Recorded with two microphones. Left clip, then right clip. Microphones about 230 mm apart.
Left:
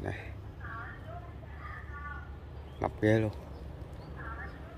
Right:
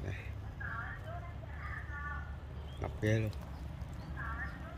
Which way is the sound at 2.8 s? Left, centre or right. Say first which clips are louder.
Left 8 dB; centre.